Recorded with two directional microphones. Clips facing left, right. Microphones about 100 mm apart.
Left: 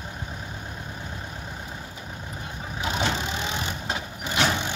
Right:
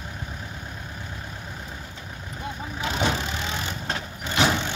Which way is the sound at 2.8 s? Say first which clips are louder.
Right 1 dB; 20° left (ahead or behind).